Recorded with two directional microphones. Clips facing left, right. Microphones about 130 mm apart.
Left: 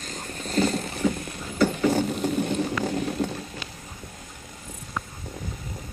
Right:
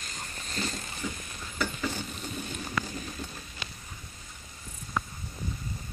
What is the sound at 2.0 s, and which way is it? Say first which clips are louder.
Vehicle: left 14 dB; 70° left (ahead or behind).